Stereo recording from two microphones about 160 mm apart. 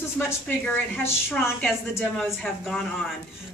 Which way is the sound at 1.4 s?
Centre (ahead or behind).